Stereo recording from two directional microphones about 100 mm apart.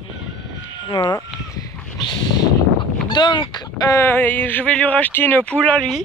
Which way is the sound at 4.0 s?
20° left (ahead or behind).